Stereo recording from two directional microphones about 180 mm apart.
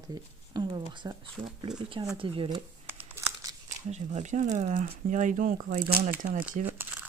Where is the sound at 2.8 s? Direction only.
15° right (ahead or behind).